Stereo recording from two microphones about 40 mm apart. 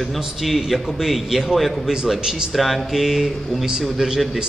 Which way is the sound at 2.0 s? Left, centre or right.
Centre.